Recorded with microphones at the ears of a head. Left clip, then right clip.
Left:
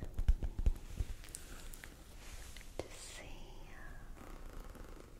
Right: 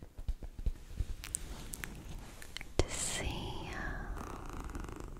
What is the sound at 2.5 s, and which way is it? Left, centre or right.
Whispering, right.